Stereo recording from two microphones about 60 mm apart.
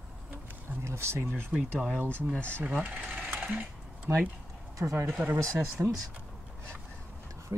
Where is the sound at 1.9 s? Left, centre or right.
Right.